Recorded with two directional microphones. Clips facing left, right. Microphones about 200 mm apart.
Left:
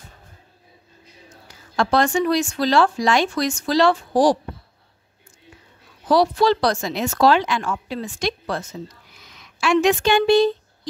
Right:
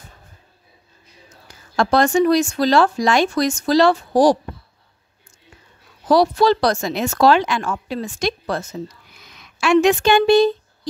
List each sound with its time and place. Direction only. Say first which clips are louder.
1.8 s speech: right 3 dB; 45° right (ahead or behind)
6.0 s speech: right 2 dB; 40° right (ahead or behind)
9.6 s speech: right 3 dB; 55° right (ahead or behind)